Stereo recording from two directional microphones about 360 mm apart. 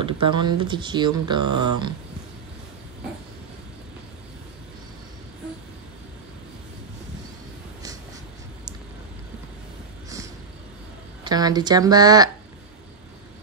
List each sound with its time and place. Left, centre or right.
0.0 s speech: centre
1.5 s speech: right
11.2 s speech: centre